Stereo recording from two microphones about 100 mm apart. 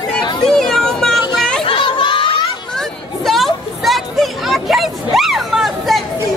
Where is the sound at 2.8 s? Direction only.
Centre (ahead or behind).